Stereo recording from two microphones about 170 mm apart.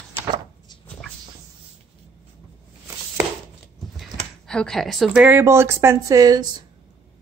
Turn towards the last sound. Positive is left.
turn(degrees=-20)  # may be behind; listen again after turning